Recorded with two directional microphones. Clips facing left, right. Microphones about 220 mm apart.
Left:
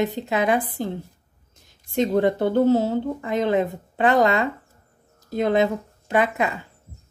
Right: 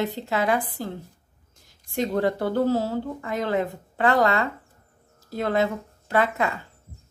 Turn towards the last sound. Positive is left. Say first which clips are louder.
# left 2 dB
turn(degrees=15)  # may be behind; listen again after turning